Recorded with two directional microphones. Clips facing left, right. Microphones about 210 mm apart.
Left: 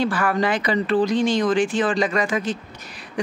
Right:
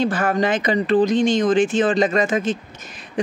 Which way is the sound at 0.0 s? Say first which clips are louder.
Right 2 dB; 20° right (ahead or behind).